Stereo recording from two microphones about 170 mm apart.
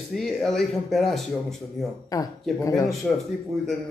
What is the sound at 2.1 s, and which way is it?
Speech, 20° left (ahead or behind).